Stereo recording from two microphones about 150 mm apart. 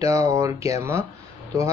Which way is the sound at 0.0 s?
20° right (ahead or behind).